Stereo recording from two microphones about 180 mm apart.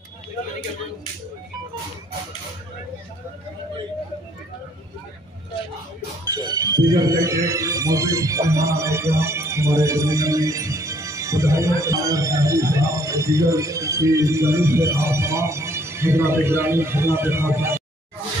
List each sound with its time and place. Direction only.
6.2 s speech: 20° right (ahead or behind)